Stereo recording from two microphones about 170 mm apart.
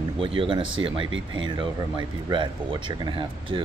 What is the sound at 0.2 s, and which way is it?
Speech, 30° right (ahead or behind).